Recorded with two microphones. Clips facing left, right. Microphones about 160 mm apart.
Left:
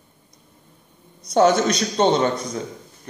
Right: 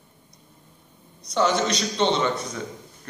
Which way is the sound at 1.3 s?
50° left (ahead or behind).